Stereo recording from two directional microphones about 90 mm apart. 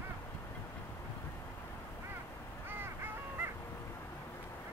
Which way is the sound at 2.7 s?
25° right (ahead or behind).